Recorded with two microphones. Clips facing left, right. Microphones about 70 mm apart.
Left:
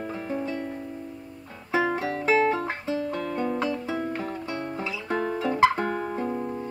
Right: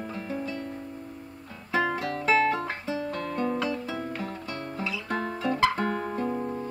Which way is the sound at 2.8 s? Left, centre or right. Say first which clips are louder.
Left 4 dB; centre.